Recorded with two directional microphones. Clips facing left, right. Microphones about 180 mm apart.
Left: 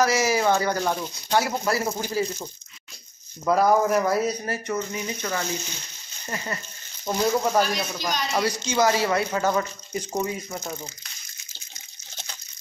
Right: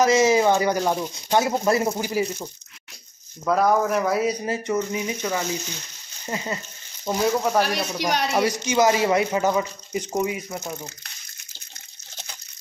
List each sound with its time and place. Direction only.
0.0 s speech: 20° right (ahead or behind)
3.4 s speech: 5° left (ahead or behind)
4.3 s speech: 15° right (ahead or behind)
7.1 s speech: 5° right (ahead or behind)
7.6 s speech: 65° right (ahead or behind)
8.4 s speech: 20° right (ahead or behind)